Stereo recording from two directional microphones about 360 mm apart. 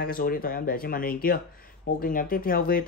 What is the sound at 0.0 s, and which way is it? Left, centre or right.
Speech, left.